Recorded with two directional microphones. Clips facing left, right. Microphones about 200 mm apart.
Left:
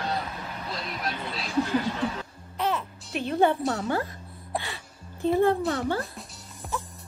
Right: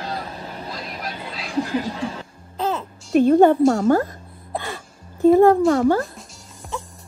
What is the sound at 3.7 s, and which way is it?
Speech, 45° right (ahead or behind).